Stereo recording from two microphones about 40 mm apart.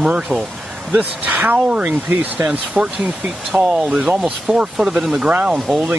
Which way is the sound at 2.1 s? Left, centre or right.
Right.